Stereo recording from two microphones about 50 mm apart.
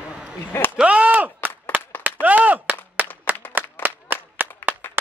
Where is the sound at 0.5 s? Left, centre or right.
Left.